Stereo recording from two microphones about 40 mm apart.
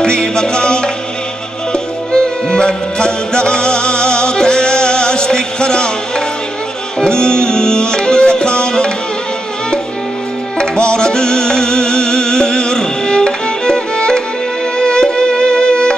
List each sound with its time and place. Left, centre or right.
0.0 s music: centre
10.6 s music: left